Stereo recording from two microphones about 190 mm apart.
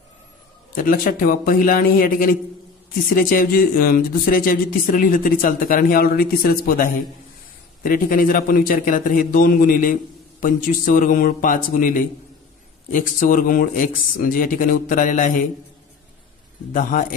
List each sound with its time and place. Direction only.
0.7 s speech: 50° left (ahead or behind)
16.7 s speech: 45° left (ahead or behind)